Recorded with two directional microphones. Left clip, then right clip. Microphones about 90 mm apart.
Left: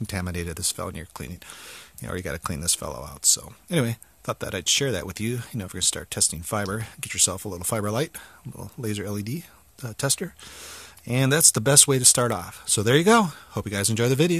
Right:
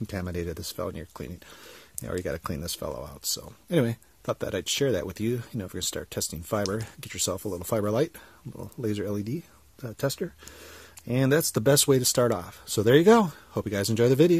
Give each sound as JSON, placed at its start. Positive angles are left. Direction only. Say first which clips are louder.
{"t": 0.0, "sound": "speech", "louder": "left 1 dB", "side_deg": 40}